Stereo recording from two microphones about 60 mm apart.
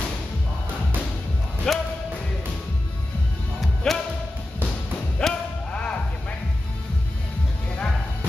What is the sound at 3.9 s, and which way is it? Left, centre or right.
Music, centre.